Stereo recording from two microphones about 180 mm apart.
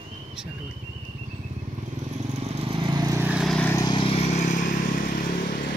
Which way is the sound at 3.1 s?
5° right (ahead or behind).